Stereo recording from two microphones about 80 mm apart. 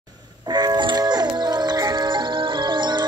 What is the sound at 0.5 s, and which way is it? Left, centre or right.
Music, right.